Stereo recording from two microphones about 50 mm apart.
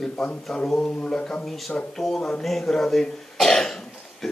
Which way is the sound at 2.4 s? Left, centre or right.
Centre.